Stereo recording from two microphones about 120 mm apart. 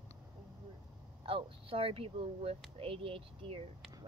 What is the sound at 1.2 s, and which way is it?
Speech, 50° right (ahead or behind).